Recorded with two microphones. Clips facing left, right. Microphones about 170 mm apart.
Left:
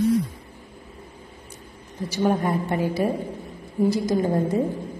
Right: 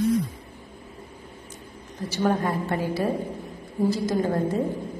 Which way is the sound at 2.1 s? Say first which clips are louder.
Left 2 dB; 20° left (ahead or behind).